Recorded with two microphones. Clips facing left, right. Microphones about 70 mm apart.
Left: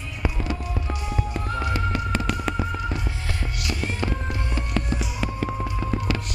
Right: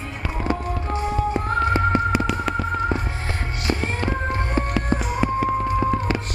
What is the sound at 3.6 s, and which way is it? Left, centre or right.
Music, right.